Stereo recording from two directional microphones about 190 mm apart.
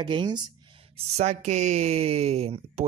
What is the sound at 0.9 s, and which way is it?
Speech, 35° right (ahead or behind).